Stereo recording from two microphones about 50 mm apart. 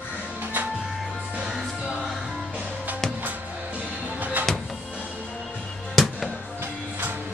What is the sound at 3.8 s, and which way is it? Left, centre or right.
Music, right.